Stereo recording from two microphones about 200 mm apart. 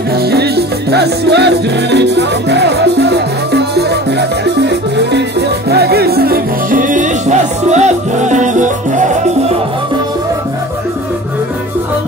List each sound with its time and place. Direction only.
0.1 s music: 50° right (ahead or behind)